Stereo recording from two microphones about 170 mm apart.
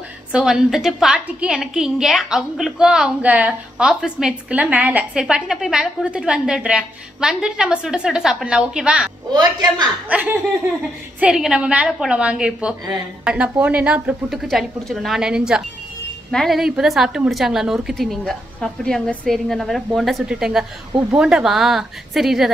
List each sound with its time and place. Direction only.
0.3 s a woman's voice: 5° right (ahead or behind)
9.3 s a woman's voice: 25° right (ahead or behind)
10.0 s a woman's voice: 10° right (ahead or behind)